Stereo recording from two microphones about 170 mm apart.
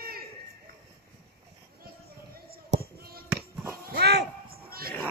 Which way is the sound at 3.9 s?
75° right (ahead or behind).